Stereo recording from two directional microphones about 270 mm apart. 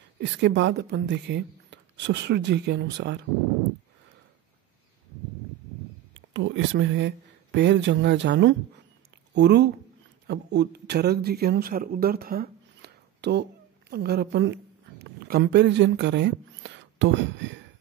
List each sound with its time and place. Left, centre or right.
0.2 s speech: right
6.1 s a man's voice: right